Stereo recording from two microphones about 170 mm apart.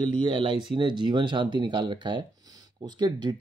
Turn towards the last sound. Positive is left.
turn(degrees=-25)  # may be behind; listen again after turning